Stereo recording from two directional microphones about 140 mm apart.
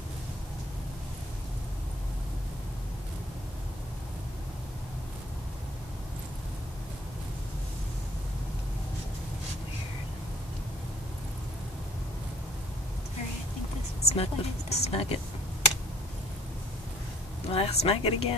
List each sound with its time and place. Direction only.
14.0 s a woman's voice: 45° left (ahead or behind)
17.5 s a woman's voice: 45° left (ahead or behind)